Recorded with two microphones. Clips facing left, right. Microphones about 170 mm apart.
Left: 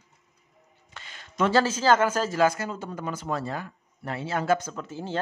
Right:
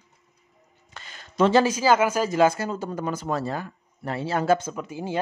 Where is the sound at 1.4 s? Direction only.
15° right (ahead or behind).